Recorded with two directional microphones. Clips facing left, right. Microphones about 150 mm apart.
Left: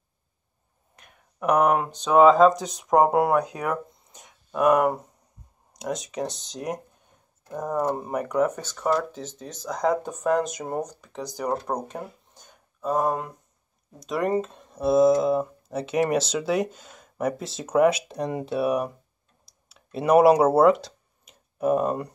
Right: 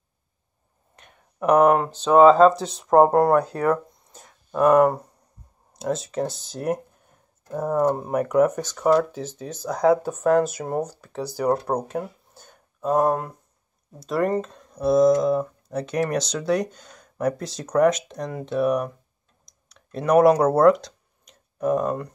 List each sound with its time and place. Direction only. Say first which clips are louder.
0.9 s a sound: right 4 dB; 5° left (ahead or behind)
2.0 s speech: right 2 dB; 5° left (ahead or behind)
6.3 s speech: right 5 dB; 5° right (ahead or behind); by 22.1 s 10° left (ahead or behind)